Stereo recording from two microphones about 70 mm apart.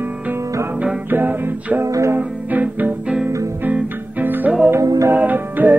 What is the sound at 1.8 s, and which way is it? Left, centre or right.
Music, right.